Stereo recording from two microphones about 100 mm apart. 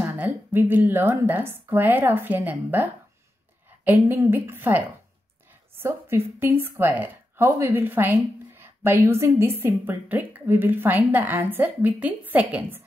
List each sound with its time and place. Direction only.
0.0 s a woman's voice: 20° right (ahead or behind)